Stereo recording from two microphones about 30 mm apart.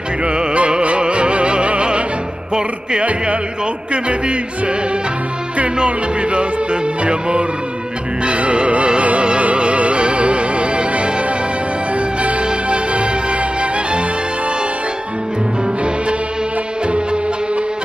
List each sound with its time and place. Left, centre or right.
0.2 s music: right
3.0 s a sound: right
3.9 s music: right
5.9 s music: right
16.8 s music: right